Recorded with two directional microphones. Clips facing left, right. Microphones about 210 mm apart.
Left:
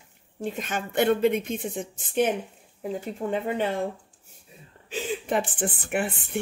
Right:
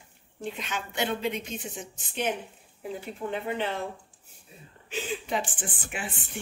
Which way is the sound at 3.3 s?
45° left (ahead or behind).